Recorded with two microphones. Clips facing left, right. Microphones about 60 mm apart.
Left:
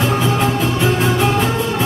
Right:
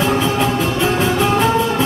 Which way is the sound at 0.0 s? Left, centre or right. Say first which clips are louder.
Even; right.